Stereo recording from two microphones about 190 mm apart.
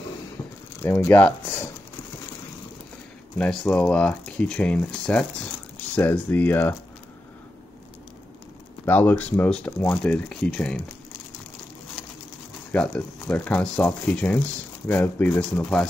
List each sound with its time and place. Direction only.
0.8 s speech: 10° left (ahead or behind)
3.3 s speech: 5° left (ahead or behind)
8.8 s speech: 10° left (ahead or behind)
12.7 s speech: 5° left (ahead or behind)